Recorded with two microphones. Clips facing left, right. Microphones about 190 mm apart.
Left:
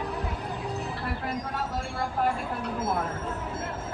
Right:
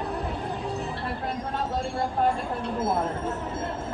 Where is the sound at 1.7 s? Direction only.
25° right (ahead or behind).